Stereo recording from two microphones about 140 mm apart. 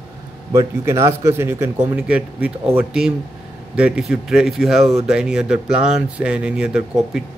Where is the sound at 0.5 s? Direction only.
20° right (ahead or behind).